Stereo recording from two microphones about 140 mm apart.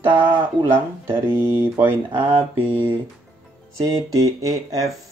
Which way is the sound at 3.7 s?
25° right (ahead or behind).